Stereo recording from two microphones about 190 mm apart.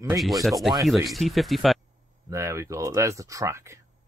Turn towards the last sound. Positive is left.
turn(degrees=-15)  # may be behind; listen again after turning